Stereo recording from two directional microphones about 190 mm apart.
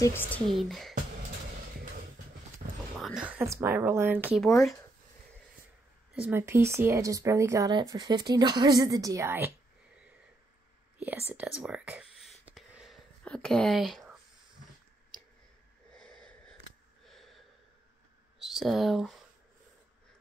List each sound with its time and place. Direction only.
0.0 s speech: 10° left (ahead or behind)
2.6 s a sound: 50° right (ahead or behind)
3.0 s speech: centre (ahead or behind)
4.4 s speech: centre (ahead or behind)
6.1 s speech: 10° right (ahead or behind)
11.0 s a sound: 10° right (ahead or behind)
16.0 s a sound: 5° left (ahead or behind)
17.0 s snort: centre (ahead or behind)
18.4 s speech: centre (ahead or behind)